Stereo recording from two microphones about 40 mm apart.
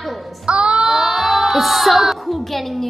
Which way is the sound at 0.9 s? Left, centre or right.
Centre.